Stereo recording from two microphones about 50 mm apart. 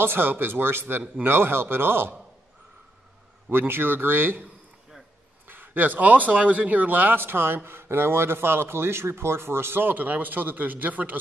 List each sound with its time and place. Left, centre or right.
0.0 s speech: right
3.4 s speech: right
5.5 s speech: right